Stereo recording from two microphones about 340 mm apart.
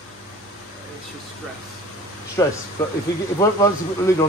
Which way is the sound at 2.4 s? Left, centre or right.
Centre.